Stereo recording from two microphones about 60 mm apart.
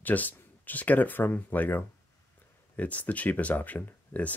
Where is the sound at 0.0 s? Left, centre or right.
Left.